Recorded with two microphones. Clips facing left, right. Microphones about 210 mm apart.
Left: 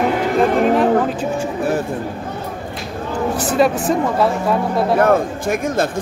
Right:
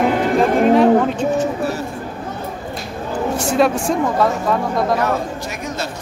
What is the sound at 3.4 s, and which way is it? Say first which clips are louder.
Speech: even; centre (ahead or behind).